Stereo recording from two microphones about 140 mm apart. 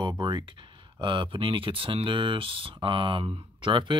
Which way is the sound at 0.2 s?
30° right (ahead or behind).